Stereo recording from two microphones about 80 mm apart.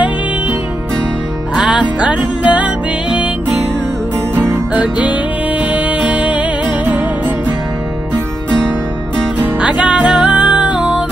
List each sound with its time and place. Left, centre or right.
1.7 s music: centre
9.4 s music: centre